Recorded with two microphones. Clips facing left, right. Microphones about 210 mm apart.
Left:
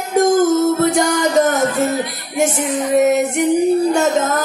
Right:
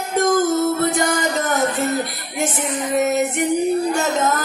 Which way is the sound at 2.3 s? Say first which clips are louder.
Left 6 dB; 50° left (ahead or behind).